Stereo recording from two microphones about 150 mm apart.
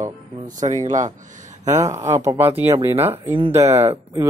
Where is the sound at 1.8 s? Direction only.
20° right (ahead or behind).